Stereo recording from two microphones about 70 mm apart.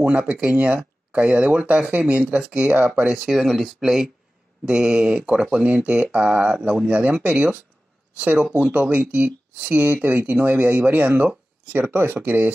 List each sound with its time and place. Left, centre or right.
0.0 s speech: centre
3.3 s speech: centre; by 12.5 s right